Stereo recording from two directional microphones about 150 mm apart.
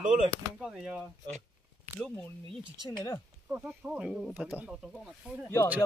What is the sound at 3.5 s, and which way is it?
Speech, 10° right (ahead or behind).